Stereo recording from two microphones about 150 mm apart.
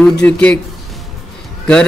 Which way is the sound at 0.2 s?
5° left (ahead or behind).